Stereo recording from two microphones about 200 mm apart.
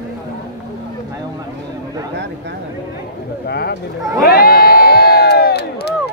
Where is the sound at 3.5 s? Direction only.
55° left (ahead or behind).